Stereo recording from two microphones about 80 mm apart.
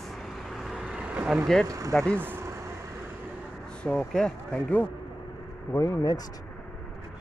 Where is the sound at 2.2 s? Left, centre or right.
Right.